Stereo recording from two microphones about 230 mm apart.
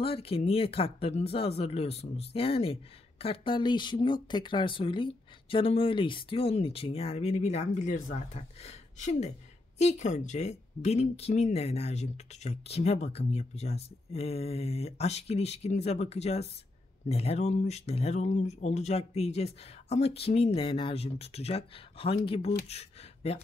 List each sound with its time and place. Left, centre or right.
0.0 s speech: left